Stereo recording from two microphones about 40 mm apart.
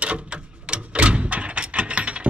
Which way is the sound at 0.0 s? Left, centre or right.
Right.